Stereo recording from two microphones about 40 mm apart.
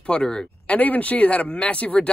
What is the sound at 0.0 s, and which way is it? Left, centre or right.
Speech, left.